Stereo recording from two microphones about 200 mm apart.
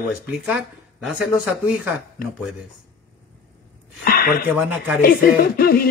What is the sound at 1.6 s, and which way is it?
Speech, 5° right (ahead or behind).